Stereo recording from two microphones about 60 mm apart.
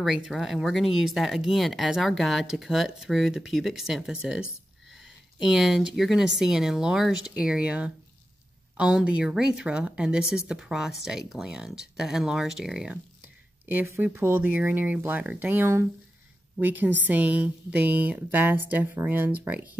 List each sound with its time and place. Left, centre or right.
0.0 s speech: centre
14.1 s a woman's voice: right